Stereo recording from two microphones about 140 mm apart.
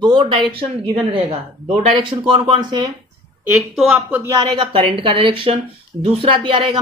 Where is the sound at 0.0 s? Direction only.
35° right (ahead or behind).